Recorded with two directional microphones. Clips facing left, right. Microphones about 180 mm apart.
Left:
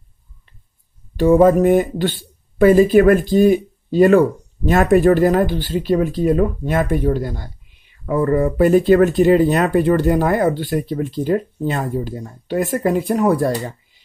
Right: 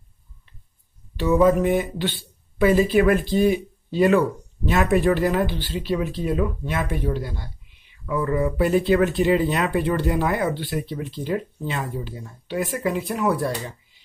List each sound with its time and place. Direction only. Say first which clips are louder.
1.1 s speech: left 6 dB; 50° left (ahead or behind)